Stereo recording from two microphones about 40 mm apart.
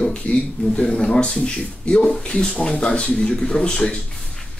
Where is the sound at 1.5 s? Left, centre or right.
Left.